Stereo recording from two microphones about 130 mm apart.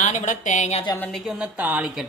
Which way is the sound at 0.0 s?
65° left (ahead or behind).